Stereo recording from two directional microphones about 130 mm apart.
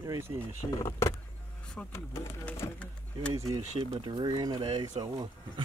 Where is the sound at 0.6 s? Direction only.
30° left (ahead or behind).